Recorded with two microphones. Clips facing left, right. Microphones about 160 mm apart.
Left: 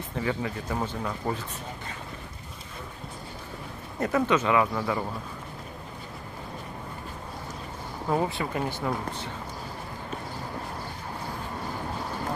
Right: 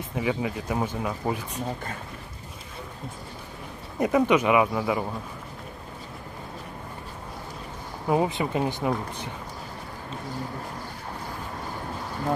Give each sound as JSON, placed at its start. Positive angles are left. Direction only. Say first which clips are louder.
{"t": 0.1, "sound": "speech", "louder": "right 3 dB", "side_deg": -10}
{"t": 4.0, "sound": "speech", "louder": "right 3 dB", "side_deg": -15}
{"t": 8.1, "sound": "speech", "louder": "right 3 dB", "side_deg": -15}